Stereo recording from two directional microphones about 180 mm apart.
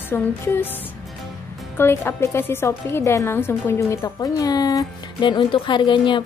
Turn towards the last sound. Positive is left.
turn(degrees=25)  # may be behind; listen again after turning